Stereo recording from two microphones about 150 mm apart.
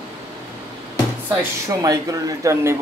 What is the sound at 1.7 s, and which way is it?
Speech, 25° right (ahead or behind).